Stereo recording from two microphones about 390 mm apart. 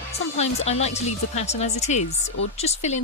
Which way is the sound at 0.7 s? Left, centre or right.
Centre.